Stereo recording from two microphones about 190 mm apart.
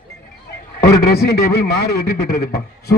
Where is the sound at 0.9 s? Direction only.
55° left (ahead or behind).